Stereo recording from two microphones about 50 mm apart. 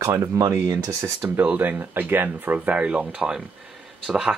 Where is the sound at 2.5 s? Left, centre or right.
Right.